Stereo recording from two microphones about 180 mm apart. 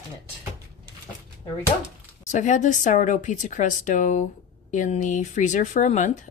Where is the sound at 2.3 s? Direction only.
40° left (ahead or behind).